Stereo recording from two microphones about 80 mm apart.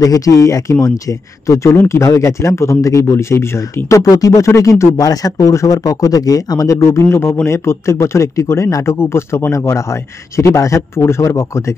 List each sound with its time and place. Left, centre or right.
0.0 s speech: left